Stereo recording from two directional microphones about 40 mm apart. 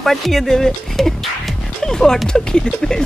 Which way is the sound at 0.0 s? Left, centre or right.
Centre.